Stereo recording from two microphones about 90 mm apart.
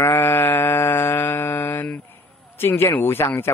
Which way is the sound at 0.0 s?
25° left (ahead or behind).